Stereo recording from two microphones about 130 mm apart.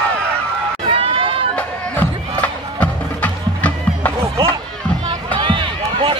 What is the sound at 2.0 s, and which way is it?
Music, 10° left (ahead or behind).